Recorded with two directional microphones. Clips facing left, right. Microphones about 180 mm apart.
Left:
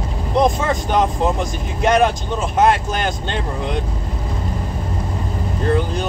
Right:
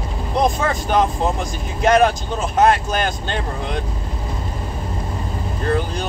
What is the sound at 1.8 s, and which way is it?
Speech, 20° left (ahead or behind).